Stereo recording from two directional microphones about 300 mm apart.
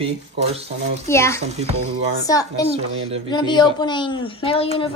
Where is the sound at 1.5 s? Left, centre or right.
Right.